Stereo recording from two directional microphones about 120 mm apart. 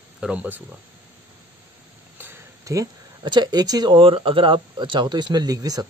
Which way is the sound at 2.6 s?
30° right (ahead or behind).